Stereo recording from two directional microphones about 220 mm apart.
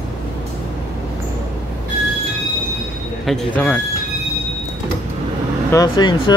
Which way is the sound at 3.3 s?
5° left (ahead or behind).